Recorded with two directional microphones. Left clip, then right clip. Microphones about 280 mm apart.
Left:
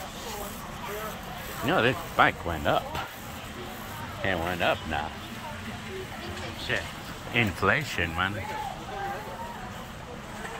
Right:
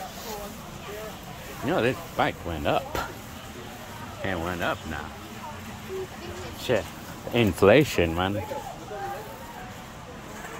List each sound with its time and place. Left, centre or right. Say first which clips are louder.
1.7 s speech: left 1 dB; centre
4.2 s speech: left 2 dB; centre
7.3 s speech: right 6 dB; right